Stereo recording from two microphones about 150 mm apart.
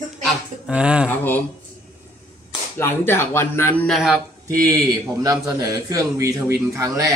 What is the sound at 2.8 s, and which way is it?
Speech, 15° left (ahead or behind).